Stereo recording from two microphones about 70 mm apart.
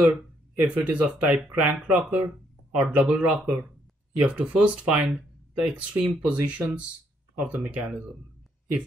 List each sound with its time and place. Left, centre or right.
0.6 s speech: right